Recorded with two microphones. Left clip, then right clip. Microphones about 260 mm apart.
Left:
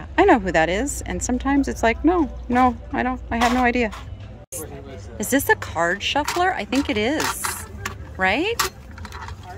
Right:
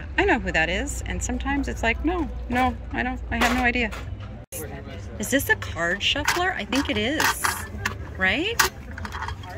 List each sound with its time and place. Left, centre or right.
0.1 s speech: centre
5.1 s speech: centre